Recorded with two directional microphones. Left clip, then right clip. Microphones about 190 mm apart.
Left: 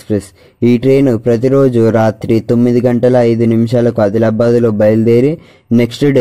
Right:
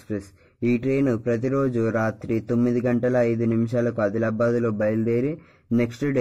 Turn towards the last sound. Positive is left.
turn(degrees=35)  # may be behind; listen again after turning